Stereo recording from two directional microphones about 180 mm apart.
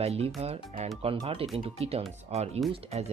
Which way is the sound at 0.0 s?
35° right (ahead or behind).